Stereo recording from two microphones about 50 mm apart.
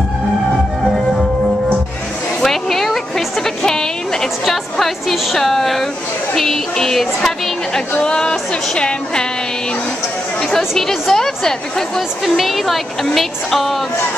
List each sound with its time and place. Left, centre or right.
2.4 s a sound: centre
6.3 s speech: centre
8.0 s music: centre
10.8 s music: centre
12.4 s speech: centre